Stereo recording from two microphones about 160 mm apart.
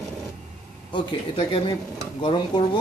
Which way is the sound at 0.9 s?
30° left (ahead or behind).